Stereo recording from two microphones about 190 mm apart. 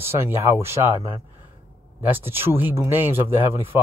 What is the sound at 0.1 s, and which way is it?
Speech, 15° right (ahead or behind).